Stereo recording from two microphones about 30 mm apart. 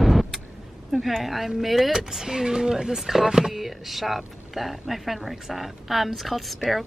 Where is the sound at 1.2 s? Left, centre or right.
Centre.